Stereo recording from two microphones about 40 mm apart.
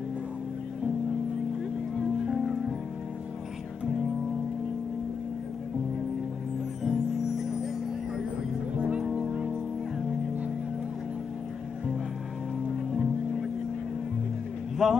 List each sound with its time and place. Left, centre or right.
2.0 s music: centre
6.8 s music: centre
8.7 s music: right
12.9 s music: centre
14.8 s speech: centre